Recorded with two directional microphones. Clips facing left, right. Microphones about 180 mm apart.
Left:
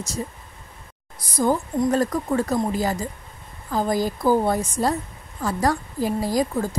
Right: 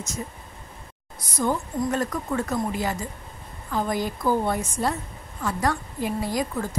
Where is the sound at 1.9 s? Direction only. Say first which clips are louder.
Left 6 dB; 35° left (ahead or behind).